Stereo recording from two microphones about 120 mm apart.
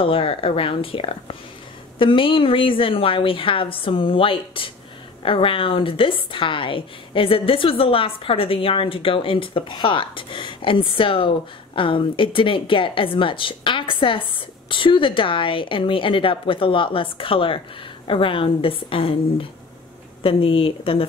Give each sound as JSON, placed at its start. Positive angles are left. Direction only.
{"t": 0.0, "sound": "a woman's voice", "side_deg": 50}
{"t": 20.2, "sound": "a woman's voice", "side_deg": 50}